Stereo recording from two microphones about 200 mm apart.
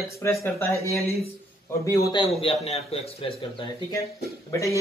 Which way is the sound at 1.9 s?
15° left (ahead or behind).